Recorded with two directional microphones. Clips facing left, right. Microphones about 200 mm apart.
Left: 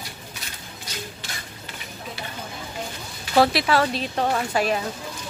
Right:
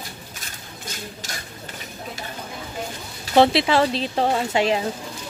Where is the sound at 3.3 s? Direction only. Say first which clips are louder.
Right 3 dB; 25° right (ahead or behind).